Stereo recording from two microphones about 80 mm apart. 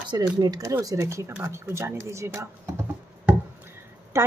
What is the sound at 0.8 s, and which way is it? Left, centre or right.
Speech, right.